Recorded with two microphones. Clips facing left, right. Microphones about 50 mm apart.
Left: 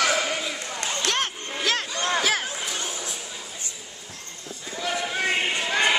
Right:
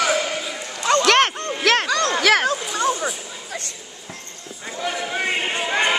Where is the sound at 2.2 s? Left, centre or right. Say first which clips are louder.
Right 8 dB; right.